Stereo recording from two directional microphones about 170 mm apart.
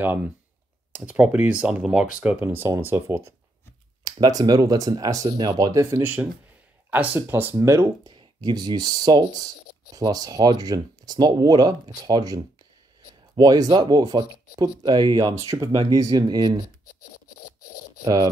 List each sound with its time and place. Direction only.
0.9 s speech: 10° right (ahead or behind)
13.4 s speech: 25° right (ahead or behind)
18.0 s speech: 20° right (ahead or behind)